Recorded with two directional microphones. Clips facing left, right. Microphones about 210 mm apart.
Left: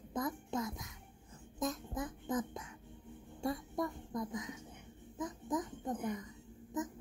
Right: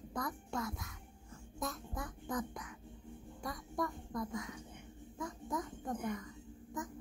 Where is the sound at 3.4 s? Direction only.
25° left (ahead or behind).